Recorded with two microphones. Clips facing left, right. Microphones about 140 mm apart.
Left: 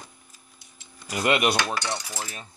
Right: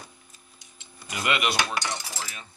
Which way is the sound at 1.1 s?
45° left (ahead or behind).